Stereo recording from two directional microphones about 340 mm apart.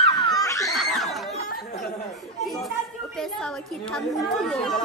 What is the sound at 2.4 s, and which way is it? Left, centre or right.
Chatter, centre.